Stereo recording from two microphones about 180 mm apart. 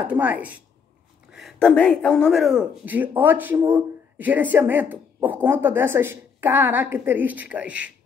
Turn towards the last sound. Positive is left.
turn(degrees=-5)  # may be behind; listen again after turning